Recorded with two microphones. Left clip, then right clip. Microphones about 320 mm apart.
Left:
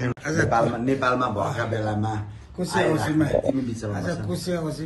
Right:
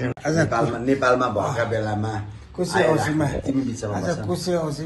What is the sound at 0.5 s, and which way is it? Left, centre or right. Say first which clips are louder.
A man's voice: even; left.